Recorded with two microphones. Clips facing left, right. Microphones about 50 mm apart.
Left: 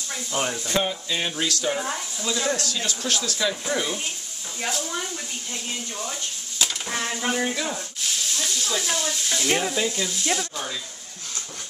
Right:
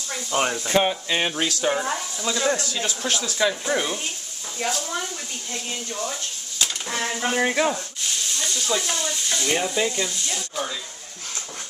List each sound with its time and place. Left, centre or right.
0.3 s speech: right
0.8 s speech: right
1.8 s speech: centre
4.6 s speech: centre
6.6 s a sound: centre
7.3 s speech: right
8.0 s speech: centre